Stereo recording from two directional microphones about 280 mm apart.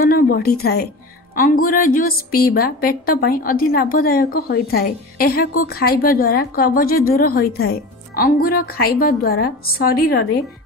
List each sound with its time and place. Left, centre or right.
0.0 s a woman's voice: left